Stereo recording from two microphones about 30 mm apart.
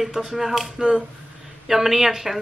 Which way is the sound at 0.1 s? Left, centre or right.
Centre.